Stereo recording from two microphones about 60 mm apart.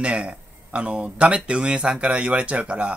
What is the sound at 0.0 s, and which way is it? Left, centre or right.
Speech, centre.